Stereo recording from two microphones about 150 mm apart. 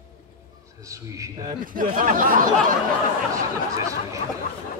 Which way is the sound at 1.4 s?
65° right (ahead or behind).